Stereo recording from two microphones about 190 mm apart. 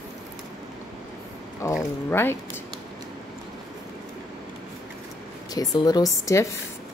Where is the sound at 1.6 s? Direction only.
15° left (ahead or behind).